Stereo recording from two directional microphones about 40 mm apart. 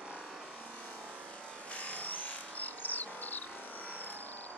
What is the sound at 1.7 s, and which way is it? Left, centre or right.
Music, left.